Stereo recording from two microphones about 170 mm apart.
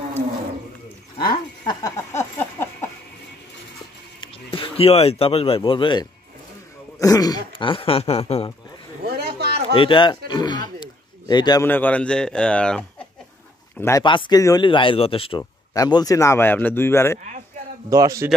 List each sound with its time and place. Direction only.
1.1 s a sound: 25° left (ahead or behind)
4.2 s speech: 30° left (ahead or behind)
9.0 s a sound: 70° right (ahead or behind)
9.8 s speech: 30° left (ahead or behind)
11.6 s speech: 10° left (ahead or behind)
13.7 s speech: 15° left (ahead or behind)
14.0 s speech: 30° left (ahead or behind)
15.7 s speech: 20° left (ahead or behind)
17.8 s a man's voice: 20° right (ahead or behind)